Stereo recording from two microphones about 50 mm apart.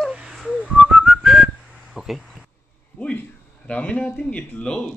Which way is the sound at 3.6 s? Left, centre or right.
Left.